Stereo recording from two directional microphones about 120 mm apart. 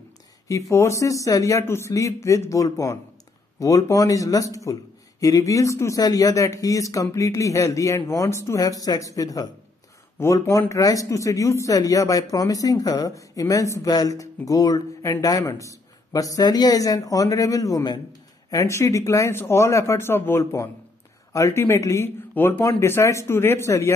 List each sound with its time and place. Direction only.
0.5 s speech: 25° left (ahead or behind)